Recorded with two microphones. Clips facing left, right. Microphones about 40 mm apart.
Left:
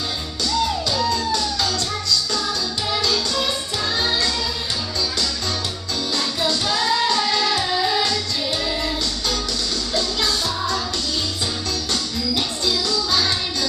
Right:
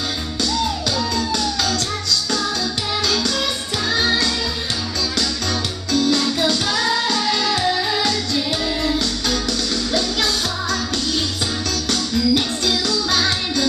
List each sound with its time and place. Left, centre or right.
1.1 s music: right
3.9 s music: right
5.9 s music: right
11.9 s music: right